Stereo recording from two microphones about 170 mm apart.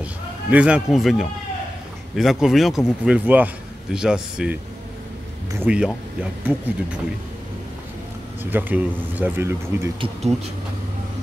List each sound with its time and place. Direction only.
0.0 s a man's voice: 10° right (ahead or behind)
5.6 s speech: 5° right (ahead or behind)
8.5 s speech: 10° right (ahead or behind)
9.9 s speech: 30° right (ahead or behind)